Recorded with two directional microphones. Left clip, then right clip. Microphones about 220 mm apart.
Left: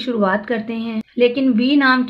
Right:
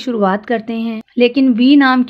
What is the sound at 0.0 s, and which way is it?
A woman's voice, 45° right (ahead or behind).